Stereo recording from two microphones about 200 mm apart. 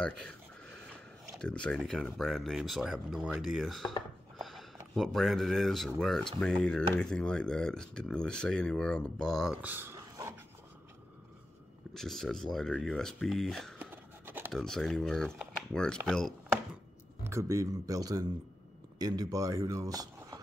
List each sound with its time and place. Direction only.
0.0 s speech: 5° left (ahead or behind); by 10.3 s 15° right (ahead or behind)
11.9 s speech: centre (ahead or behind)
13.7 s a sound: 10° right (ahead or behind)
14.5 s speech: 5° left (ahead or behind)
17.2 s speech: 15° right (ahead or behind)